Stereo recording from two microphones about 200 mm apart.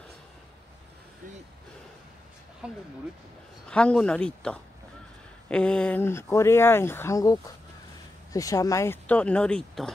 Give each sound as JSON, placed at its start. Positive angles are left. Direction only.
{"t": 2.6, "sound": "speech", "side_deg": -5}
{"t": 3.6, "sound": "speech", "side_deg": 5}